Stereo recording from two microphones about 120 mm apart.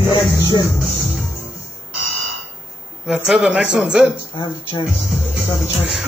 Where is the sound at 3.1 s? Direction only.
5° right (ahead or behind).